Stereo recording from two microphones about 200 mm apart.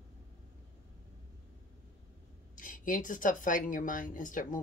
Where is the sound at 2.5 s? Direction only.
40° left (ahead or behind).